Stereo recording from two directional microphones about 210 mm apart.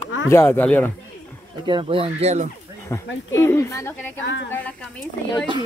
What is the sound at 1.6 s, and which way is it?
Speech, 25° right (ahead or behind).